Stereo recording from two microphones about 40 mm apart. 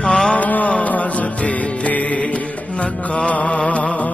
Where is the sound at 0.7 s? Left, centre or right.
Left.